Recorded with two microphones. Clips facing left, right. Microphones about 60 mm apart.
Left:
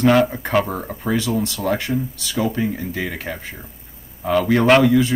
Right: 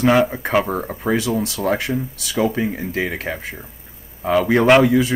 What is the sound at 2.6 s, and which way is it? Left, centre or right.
Speech, right.